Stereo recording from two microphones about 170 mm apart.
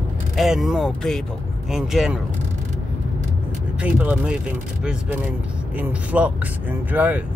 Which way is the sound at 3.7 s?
10° right (ahead or behind).